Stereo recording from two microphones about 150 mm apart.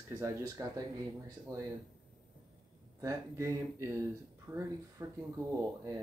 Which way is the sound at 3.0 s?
20° right (ahead or behind).